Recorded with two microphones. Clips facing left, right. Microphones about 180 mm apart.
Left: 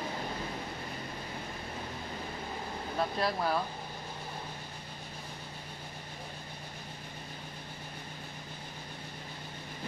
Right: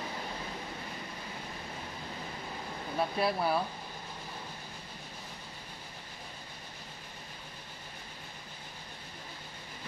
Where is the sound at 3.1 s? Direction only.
5° right (ahead or behind).